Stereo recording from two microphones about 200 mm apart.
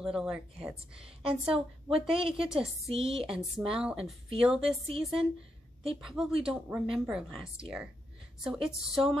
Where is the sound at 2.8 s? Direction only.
30° right (ahead or behind).